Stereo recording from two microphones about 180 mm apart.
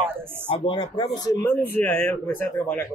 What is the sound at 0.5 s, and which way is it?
Speech, 30° left (ahead or behind).